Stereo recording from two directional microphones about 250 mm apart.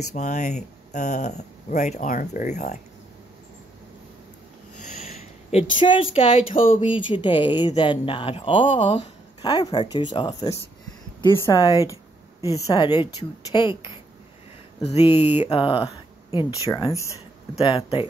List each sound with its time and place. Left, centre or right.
0.1 s speech: left
5.0 s speech: left